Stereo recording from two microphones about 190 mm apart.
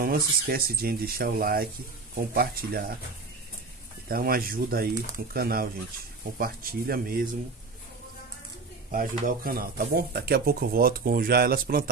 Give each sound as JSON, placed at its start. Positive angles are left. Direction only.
{"t": 0.0, "sound": "speech", "side_deg": -50}
{"t": 4.1, "sound": "speech", "side_deg": -50}
{"t": 8.9, "sound": "speech", "side_deg": -50}